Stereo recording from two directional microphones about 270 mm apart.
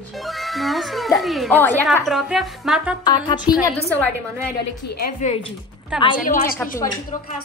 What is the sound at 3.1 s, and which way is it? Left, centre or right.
Speech, centre.